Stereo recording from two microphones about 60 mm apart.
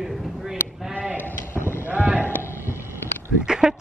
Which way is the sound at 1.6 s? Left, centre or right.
Left.